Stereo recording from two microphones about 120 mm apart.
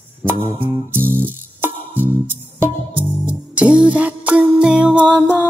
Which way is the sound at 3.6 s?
10° right (ahead or behind).